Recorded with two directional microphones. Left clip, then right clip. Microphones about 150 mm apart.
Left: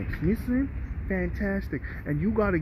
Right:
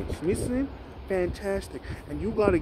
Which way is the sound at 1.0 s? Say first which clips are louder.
Right 4 dB; 35° right (ahead or behind).